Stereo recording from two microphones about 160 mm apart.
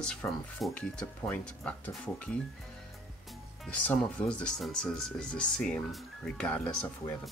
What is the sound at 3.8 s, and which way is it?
Speech, 5° left (ahead or behind).